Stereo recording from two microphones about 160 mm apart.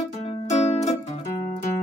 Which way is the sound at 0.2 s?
40° left (ahead or behind).